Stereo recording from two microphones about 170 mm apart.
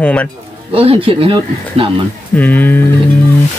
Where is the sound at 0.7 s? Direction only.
35° right (ahead or behind).